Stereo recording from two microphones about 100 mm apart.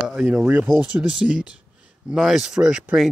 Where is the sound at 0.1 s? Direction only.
10° right (ahead or behind).